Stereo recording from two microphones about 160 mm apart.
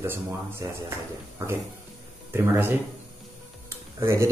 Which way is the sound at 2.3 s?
15° right (ahead or behind).